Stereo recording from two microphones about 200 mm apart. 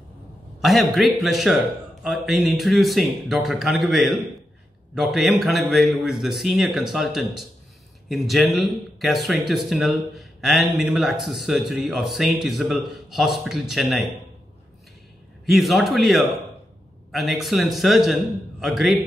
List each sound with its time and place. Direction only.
0.6 s speech: centre (ahead or behind)
15.4 s speech: centre (ahead or behind)